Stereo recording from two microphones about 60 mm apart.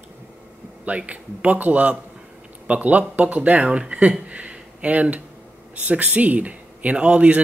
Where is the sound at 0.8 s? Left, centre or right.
Right.